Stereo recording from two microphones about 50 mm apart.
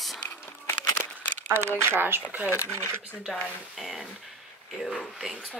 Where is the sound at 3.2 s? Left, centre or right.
Centre.